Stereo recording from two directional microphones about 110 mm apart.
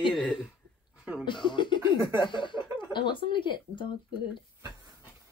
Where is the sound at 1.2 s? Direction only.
45° left (ahead or behind).